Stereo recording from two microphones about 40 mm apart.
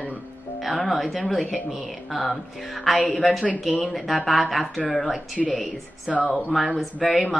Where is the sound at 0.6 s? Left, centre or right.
Centre.